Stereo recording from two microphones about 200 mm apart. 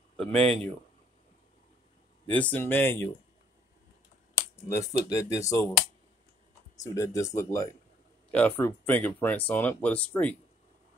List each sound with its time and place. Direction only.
0.2 s speech: 5° left (ahead or behind)
2.3 s speech: 10° left (ahead or behind)
4.4 s speech: 15° left (ahead or behind)
6.8 s speech: 15° left (ahead or behind)